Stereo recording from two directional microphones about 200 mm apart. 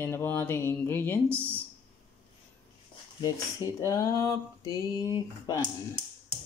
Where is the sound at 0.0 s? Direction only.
10° left (ahead or behind).